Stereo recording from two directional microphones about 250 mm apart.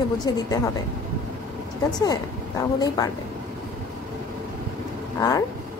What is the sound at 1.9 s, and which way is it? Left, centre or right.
Speech, centre.